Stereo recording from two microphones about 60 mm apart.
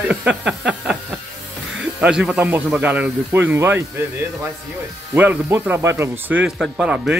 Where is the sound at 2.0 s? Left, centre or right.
Centre.